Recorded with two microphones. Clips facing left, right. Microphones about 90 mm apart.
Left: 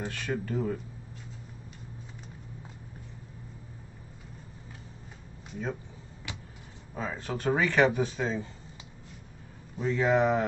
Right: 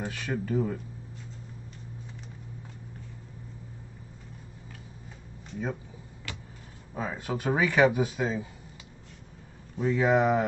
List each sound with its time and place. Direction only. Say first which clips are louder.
0.0 s speech: even; 5° right (ahead or behind)
6.3 s vehicle: right 1 dB; 20° left (ahead or behind)
6.9 s speech: right 2 dB; 5° right (ahead or behind)
9.8 s speech: right 1 dB; 5° right (ahead or behind)